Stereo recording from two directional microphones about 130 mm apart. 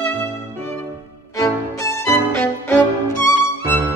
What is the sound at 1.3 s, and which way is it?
Music, 25° left (ahead or behind).